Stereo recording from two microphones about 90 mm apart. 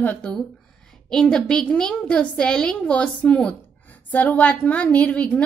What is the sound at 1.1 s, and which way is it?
A woman's voice, 5° left (ahead or behind).